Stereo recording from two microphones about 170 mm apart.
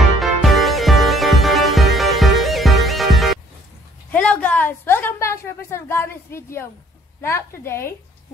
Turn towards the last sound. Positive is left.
turn(degrees=15)  # may be behind; listen again after turning